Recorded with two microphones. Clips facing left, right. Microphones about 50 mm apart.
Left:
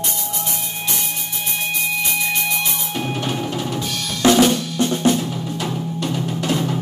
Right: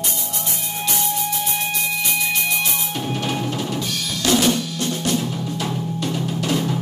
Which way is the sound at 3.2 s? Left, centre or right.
Centre.